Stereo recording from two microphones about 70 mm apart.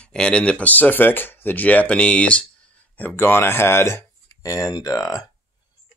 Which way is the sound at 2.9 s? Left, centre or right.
Left.